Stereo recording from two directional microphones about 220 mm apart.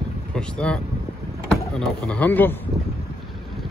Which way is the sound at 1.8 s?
5° left (ahead or behind).